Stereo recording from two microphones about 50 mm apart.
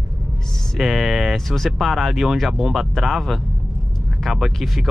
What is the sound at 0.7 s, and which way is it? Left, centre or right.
Speech, centre.